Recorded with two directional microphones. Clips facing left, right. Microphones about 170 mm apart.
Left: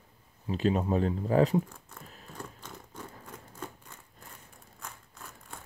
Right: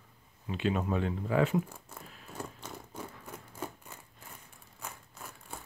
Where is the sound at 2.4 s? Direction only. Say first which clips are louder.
Right 2 dB; 10° right (ahead or behind).